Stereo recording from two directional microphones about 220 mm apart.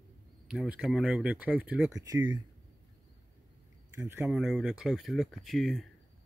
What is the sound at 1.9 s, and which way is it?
Speech, 15° right (ahead or behind).